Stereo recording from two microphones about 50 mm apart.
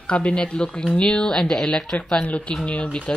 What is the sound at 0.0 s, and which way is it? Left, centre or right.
Speech, left.